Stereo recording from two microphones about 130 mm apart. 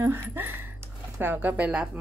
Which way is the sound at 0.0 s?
15° right (ahead or behind).